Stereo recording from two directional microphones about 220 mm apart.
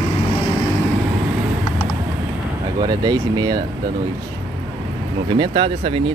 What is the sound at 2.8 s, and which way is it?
Speech, 20° right (ahead or behind).